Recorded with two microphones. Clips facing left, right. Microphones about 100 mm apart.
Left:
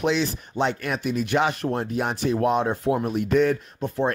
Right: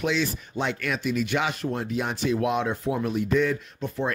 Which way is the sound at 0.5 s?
40° left (ahead or behind).